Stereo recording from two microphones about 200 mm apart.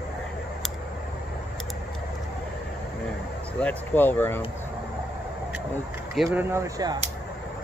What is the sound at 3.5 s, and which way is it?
Speech, 5° left (ahead or behind).